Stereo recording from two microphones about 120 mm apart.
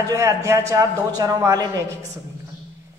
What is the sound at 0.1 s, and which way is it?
A woman's voice, 25° right (ahead or behind).